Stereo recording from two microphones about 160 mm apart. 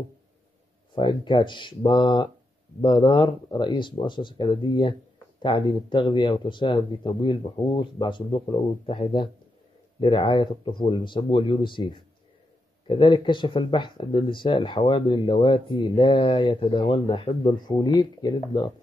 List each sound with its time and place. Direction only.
0.9 s speech: 30° left (ahead or behind)